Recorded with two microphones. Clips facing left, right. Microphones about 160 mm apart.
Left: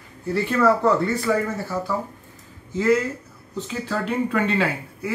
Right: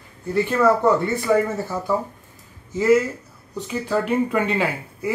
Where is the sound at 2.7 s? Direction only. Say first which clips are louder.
Right 3 dB; 10° right (ahead or behind).